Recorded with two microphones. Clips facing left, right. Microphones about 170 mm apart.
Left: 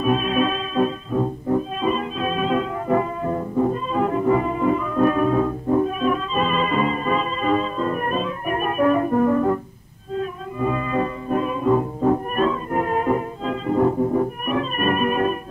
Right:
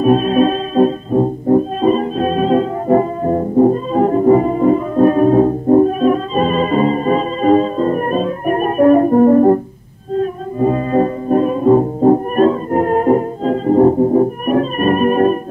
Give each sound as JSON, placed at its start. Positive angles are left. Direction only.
{"t": 0.0, "sound": "music", "side_deg": -40}